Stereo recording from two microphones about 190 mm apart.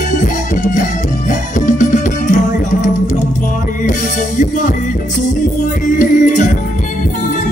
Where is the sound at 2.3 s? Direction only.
45° left (ahead or behind).